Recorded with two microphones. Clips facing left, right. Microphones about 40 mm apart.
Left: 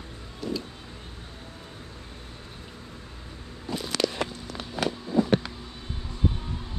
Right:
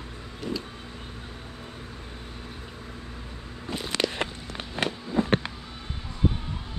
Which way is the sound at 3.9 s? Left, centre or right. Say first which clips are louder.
Even; right.